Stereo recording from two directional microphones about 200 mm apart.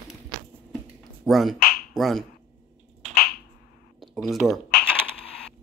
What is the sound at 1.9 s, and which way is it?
Speech, centre (ahead or behind).